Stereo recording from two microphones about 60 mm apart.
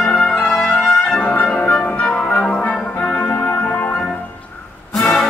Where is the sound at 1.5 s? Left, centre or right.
Centre.